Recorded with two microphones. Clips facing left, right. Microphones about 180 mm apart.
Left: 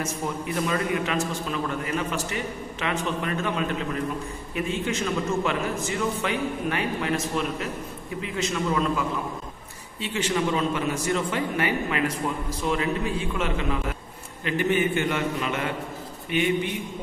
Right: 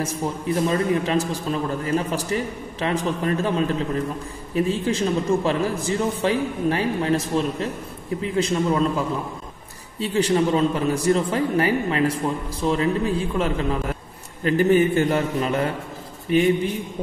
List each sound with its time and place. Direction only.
0.6 s a man's voice: 35° right (ahead or behind)